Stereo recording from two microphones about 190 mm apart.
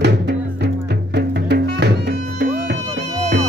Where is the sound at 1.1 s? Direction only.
60° right (ahead or behind).